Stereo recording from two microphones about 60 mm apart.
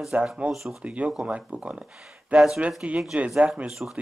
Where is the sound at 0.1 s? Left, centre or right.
Right.